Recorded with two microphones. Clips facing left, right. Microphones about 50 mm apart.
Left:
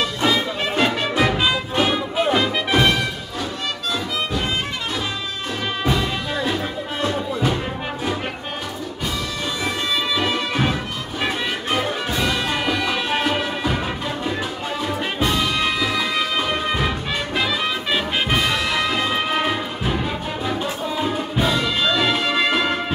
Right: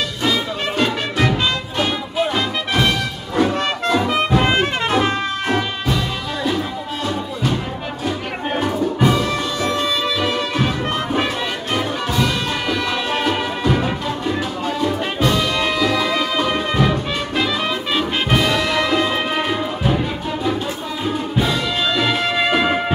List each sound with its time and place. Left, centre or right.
0.2 s music: centre
3.3 s music: right
5.9 s music: centre
9.6 s bagpipes: centre
11.7 s music: centre
17.9 s music: centre